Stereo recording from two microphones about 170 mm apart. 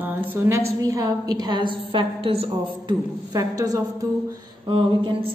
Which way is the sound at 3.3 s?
20° right (ahead or behind).